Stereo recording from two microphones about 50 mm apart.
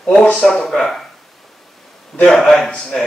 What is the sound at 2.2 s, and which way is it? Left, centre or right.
Speech, centre.